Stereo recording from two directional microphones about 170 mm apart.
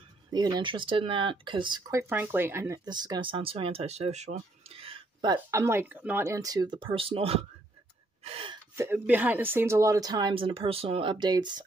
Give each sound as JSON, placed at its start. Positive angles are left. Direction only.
{"t": 0.3, "sound": "speech", "side_deg": -25}
{"t": 8.2, "sound": "gasp", "side_deg": -35}
{"t": 8.7, "sound": "speech", "side_deg": -15}